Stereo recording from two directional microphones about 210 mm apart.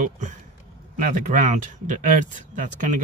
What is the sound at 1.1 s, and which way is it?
Speech, 40° right (ahead or behind).